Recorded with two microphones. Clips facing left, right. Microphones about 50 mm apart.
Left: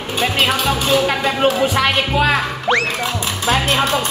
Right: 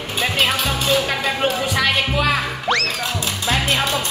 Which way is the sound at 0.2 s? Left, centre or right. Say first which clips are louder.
Left 2 dB; centre.